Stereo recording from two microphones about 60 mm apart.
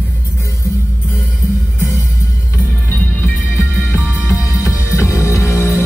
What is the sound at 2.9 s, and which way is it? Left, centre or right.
Music, left.